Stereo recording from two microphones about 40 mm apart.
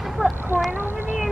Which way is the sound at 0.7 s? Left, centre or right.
Right.